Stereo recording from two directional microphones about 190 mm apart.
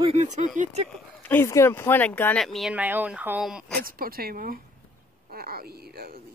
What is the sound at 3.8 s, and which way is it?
Speech, 50° right (ahead or behind).